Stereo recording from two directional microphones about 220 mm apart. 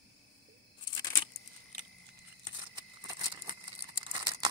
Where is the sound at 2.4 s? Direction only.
20° right (ahead or behind).